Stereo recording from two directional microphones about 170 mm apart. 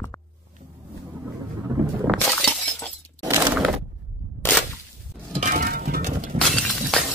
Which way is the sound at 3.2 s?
15° right (ahead or behind).